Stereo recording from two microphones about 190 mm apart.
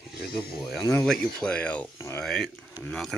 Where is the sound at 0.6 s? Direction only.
Centre (ahead or behind).